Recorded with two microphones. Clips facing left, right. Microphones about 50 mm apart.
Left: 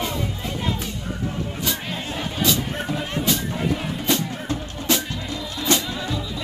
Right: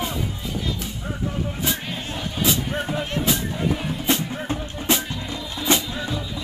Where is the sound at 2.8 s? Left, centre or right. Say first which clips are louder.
Left 1 dB; centre.